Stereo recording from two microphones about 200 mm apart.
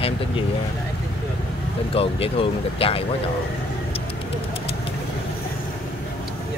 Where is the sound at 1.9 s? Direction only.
30° left (ahead or behind).